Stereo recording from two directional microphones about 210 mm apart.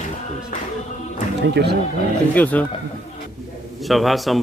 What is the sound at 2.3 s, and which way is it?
Speech, 5° left (ahead or behind).